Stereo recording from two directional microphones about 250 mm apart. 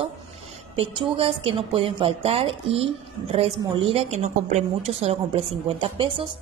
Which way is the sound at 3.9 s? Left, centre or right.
Right.